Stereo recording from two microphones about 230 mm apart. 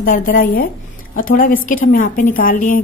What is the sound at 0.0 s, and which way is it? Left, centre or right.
A woman's voice, left.